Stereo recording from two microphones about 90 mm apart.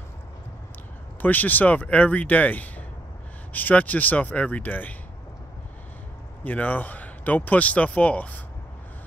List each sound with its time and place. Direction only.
1.2 s speech: 20° left (ahead or behind)
6.4 s speech: 20° left (ahead or behind)